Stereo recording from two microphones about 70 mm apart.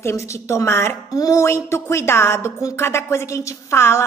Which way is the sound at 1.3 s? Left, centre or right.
Left.